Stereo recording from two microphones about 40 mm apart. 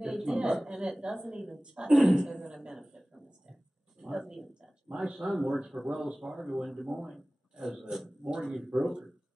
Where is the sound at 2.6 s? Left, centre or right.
Centre.